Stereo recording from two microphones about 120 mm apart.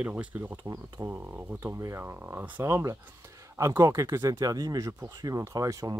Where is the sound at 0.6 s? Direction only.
30° right (ahead or behind).